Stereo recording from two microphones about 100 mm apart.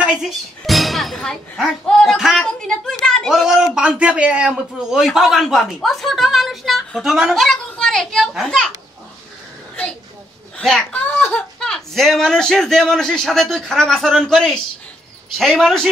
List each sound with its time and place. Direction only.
0.0 s a man's voice: 5° right (ahead or behind)
3.3 s a man's voice: 5° right (ahead or behind)
10.6 s a child's voice: centre (ahead or behind)
10.9 s speech: 20° left (ahead or behind)
11.6 s a man's voice: 5° left (ahead or behind)